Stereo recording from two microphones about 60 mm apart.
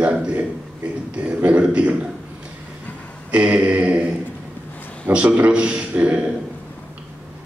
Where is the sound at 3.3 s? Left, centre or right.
Centre.